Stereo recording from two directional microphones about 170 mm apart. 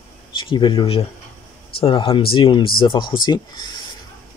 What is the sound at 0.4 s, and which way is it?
Speech, 30° left (ahead or behind).